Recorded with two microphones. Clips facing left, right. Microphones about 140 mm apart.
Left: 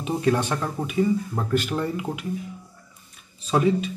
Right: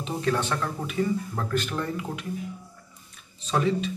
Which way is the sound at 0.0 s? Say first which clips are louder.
Left 4 dB; 15° left (ahead or behind).